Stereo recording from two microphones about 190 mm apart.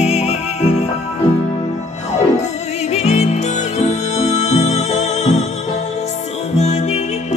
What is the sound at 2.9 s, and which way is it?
Music, 35° left (ahead or behind).